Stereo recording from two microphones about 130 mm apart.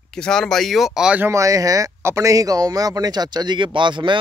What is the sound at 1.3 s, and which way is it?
Speech, 25° right (ahead or behind).